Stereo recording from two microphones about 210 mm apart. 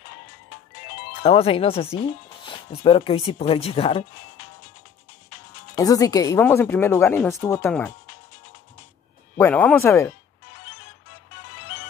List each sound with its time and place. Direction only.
1.2 s speech: 25° left (ahead or behind)
5.8 s speech: 15° left (ahead or behind)
9.4 s speech: 5° left (ahead or behind)